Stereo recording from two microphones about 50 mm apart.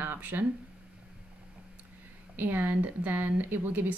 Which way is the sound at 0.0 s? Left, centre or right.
Right.